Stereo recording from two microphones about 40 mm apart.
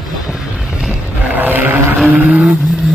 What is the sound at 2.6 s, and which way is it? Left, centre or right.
Vehicle, centre.